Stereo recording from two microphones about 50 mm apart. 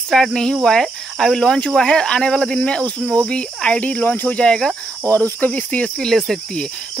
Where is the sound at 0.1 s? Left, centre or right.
Centre.